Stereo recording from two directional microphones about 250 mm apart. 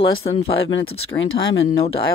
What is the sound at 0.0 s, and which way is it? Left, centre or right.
Speech, left.